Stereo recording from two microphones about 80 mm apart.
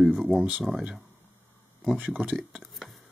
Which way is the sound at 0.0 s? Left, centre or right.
Centre.